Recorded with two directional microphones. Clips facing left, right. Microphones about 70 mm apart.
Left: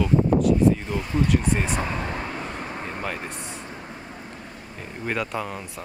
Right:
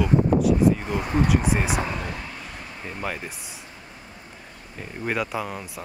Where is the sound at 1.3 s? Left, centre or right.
Centre.